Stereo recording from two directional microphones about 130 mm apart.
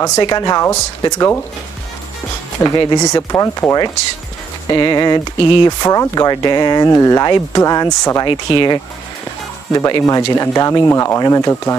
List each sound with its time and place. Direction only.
0.0 s speech: 30° left (ahead or behind)
2.8 s speech: 30° left (ahead or behind)